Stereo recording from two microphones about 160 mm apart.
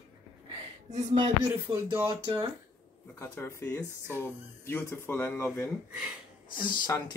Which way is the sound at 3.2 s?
15° left (ahead or behind).